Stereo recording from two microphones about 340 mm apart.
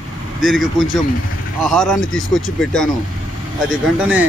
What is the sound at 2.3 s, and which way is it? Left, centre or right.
Speech, centre.